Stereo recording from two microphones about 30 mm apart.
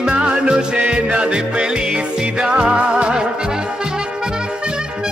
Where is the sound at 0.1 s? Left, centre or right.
Right.